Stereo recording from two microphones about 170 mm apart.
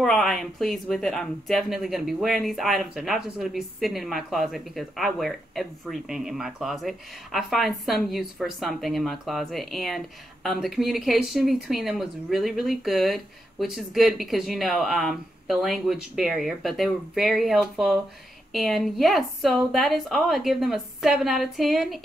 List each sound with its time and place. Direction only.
0.0 s speech: centre (ahead or behind)